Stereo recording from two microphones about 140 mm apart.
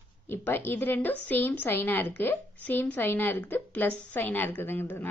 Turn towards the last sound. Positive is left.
turn(degrees=15)  # may be behind; listen again after turning